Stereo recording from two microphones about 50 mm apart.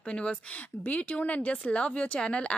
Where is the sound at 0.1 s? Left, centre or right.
Left.